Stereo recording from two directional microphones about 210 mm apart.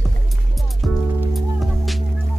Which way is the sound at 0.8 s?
Centre (ahead or behind).